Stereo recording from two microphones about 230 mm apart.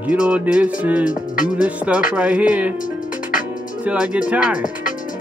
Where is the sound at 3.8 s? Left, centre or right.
Centre.